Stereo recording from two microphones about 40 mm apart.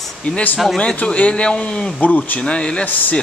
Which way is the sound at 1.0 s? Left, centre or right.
Left.